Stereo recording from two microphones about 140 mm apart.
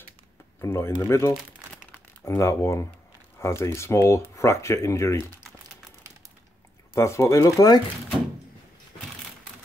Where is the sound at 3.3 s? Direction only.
20° left (ahead or behind).